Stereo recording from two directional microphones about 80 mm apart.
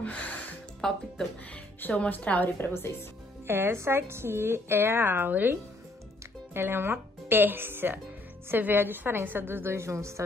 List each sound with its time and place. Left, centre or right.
0.7 s speech: centre
1.8 s a woman's voice: left
3.4 s a woman's voice: right